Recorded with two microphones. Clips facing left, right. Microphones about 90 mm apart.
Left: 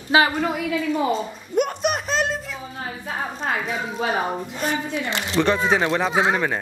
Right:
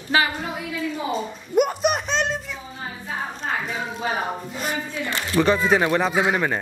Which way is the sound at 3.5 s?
65° left (ahead or behind).